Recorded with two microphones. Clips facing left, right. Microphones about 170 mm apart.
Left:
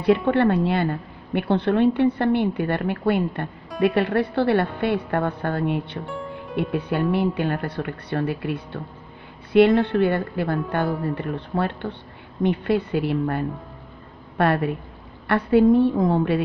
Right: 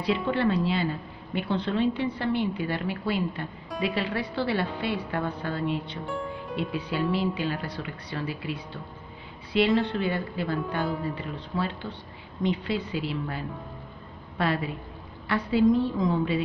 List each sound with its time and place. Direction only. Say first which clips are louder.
0.0 s a woman's voice: left 7 dB; 55° left (ahead or behind)
6.0 s music: left 1 dB; centre (ahead or behind)
6.5 s a woman's voice: left 7 dB; 60° left (ahead or behind)
9.8 s a woman's voice: left 7 dB; 60° left (ahead or behind)